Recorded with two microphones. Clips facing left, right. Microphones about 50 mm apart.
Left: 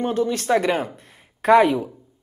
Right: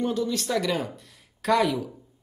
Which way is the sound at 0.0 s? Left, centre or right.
Left.